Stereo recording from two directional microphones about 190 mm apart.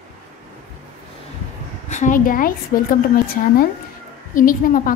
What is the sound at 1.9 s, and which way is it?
Speech, 40° left (ahead or behind).